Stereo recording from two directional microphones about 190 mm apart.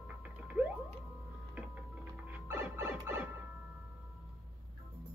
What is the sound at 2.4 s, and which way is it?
Music, 10° right (ahead or behind).